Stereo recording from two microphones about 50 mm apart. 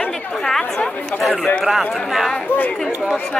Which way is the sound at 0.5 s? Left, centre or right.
Centre.